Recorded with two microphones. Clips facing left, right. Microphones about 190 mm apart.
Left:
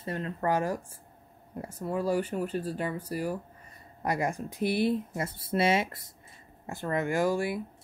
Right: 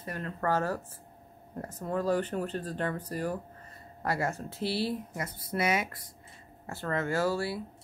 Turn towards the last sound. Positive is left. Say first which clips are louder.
# left 2 dB
turn(degrees=15)  # may be behind; listen again after turning